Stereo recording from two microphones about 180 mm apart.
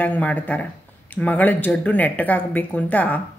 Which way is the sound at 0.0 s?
10° left (ahead or behind).